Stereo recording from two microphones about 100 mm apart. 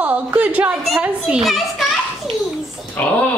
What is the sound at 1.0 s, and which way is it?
Speech, 5° right (ahead or behind).